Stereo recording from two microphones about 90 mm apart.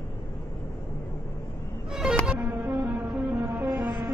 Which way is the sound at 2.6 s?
20° right (ahead or behind).